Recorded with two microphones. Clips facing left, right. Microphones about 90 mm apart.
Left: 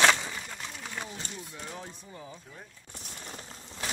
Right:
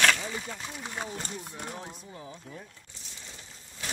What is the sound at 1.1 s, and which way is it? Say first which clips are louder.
Speech: right 3 dB; 45° right (ahead or behind).